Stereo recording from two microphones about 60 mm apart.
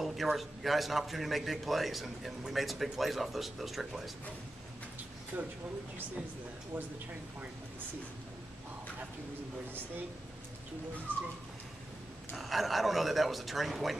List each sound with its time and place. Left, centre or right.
0.0 s a man's voice: centre
11.1 s speech: right
12.4 s a man's voice: centre